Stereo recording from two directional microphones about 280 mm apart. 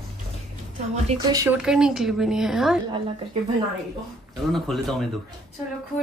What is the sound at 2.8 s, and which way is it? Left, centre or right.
Speech, centre.